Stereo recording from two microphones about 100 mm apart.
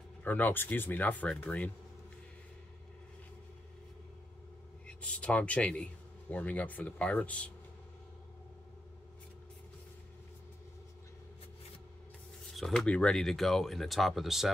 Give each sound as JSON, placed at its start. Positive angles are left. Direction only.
{"t": 0.2, "sound": "speech", "side_deg": 20}
{"t": 4.8, "sound": "speech", "side_deg": 10}
{"t": 12.5, "sound": "speech", "side_deg": 5}